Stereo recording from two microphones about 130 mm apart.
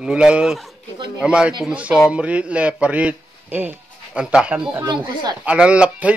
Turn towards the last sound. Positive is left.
turn(degrees=-10)  # may be behind; listen again after turning